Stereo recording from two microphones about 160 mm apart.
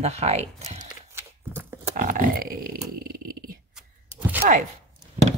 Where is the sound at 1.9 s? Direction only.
60° right (ahead or behind).